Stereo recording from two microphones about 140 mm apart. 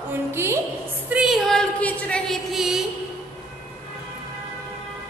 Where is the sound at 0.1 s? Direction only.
15° right (ahead or behind).